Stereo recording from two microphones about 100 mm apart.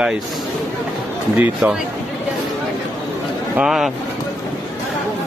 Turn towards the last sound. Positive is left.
turn(degrees=-5)  # may be behind; listen again after turning